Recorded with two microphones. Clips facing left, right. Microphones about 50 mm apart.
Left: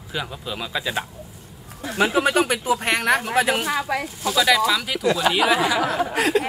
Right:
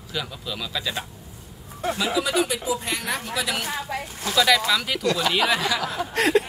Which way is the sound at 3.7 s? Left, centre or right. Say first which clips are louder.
Left 6 dB; left.